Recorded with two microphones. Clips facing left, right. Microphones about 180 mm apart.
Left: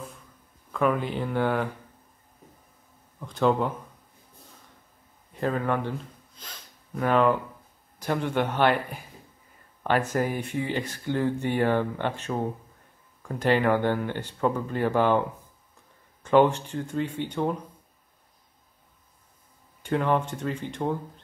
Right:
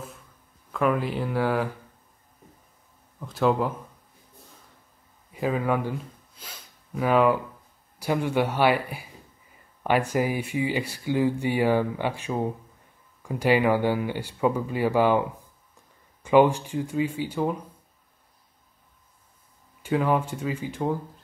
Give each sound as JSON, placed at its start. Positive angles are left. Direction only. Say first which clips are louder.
{"t": 0.7, "sound": "speech", "louder": "right 1 dB", "side_deg": 0}
{"t": 3.2, "sound": "speech", "louder": "even", "side_deg": -5}
{"t": 5.3, "sound": "speech", "louder": "right 1 dB", "side_deg": -5}
{"t": 19.8, "sound": "speech", "louder": "right 1 dB", "side_deg": -5}